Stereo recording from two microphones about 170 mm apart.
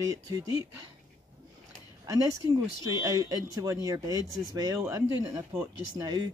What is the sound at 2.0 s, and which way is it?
Speech, 20° right (ahead or behind).